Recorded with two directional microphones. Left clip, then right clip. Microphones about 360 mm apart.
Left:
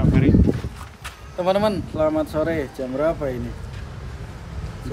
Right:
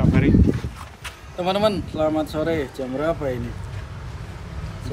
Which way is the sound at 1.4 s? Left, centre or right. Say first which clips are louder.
Left 1 dB; centre.